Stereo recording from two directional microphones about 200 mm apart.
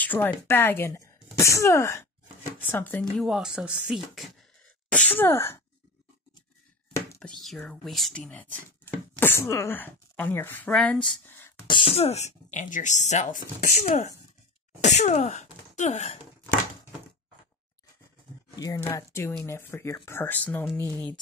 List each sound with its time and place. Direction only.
0.0 s speech: 10° left (ahead or behind)
7.2 s speech: centre (ahead or behind)
11.6 s speech: 25° left (ahead or behind)
18.6 s speech: 15° left (ahead or behind)